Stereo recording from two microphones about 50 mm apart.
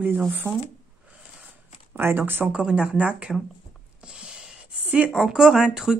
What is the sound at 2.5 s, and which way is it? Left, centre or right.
Speech, centre.